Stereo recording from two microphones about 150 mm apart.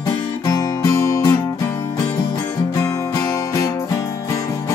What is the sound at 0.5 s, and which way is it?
Music, 20° left (ahead or behind).